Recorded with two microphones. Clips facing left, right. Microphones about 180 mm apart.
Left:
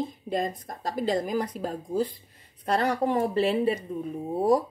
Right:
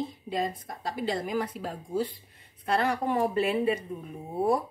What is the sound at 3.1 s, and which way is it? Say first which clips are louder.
Speech: left 2 dB; 30° left (ahead or behind).